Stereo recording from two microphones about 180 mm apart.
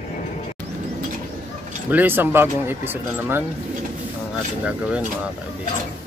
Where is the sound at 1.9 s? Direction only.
10° right (ahead or behind).